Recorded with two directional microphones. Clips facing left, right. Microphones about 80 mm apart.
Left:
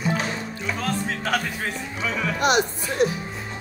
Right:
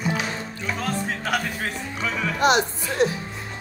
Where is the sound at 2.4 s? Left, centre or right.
Right.